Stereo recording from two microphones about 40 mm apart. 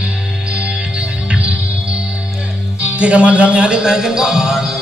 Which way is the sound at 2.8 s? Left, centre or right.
Right.